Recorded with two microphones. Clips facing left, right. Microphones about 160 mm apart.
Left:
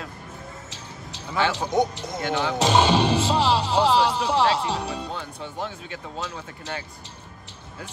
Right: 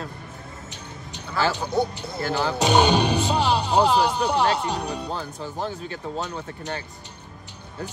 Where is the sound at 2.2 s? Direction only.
35° right (ahead or behind).